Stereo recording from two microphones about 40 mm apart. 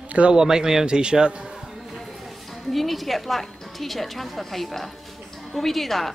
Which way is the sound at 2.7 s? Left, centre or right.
Centre.